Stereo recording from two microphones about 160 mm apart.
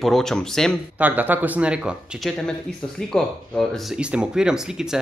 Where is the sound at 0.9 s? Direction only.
10° right (ahead or behind).